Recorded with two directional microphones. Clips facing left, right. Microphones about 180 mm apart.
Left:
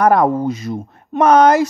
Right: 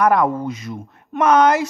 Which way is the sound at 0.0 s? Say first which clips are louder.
Left 3 dB; 35° left (ahead or behind).